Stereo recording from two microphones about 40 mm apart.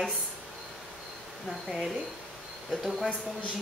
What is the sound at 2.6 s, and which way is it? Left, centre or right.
Speech, centre.